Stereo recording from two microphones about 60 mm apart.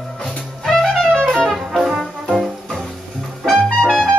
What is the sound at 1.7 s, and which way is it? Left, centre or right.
Music, centre.